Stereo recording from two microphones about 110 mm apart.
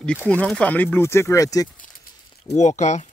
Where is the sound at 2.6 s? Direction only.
90° left.